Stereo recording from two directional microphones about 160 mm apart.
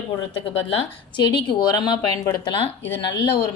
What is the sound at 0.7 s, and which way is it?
Speech, 30° left (ahead or behind).